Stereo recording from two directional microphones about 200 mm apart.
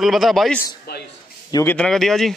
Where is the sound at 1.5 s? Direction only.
10° left (ahead or behind).